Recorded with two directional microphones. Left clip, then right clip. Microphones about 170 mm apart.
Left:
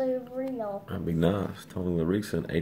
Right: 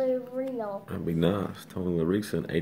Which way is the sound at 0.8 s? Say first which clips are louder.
Even; 15° right (ahead or behind).